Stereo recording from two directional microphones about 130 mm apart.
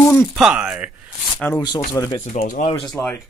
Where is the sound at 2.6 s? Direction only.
40° left (ahead or behind).